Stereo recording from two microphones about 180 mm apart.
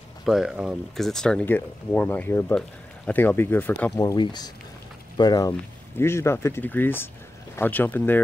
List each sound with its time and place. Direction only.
0.2 s speech: centre (ahead or behind)
4.0 s speech: 20° left (ahead or behind)